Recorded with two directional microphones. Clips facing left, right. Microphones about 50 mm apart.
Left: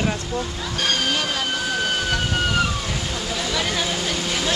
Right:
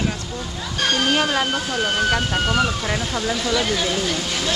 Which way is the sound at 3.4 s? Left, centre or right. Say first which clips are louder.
Right 1 dB; centre.